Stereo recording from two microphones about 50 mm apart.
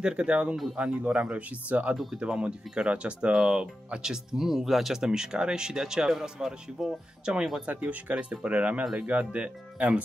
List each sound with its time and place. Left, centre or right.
0.0 s speech: centre
1.3 s speech: right; by 6.9 s centre
7.3 s speech: right
7.6 s speech: right